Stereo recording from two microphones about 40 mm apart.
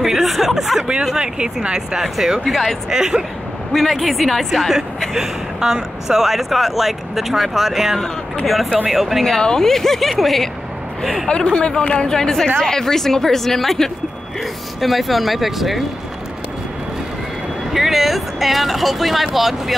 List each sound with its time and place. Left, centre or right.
0.0 s a sound: centre
1.1 s speech: centre
2.0 s speech: centre
2.9 s speech: centre
3.7 s speech: centre
5.1 s speech: centre
9.4 s speech: centre
11.4 s speech: left
12.1 s speech: centre
17.7 s speech: centre